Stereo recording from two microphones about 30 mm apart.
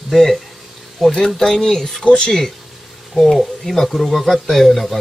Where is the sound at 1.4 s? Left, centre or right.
Centre.